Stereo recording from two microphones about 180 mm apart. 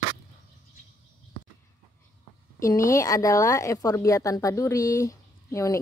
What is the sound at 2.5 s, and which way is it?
Speech, 15° left (ahead or behind).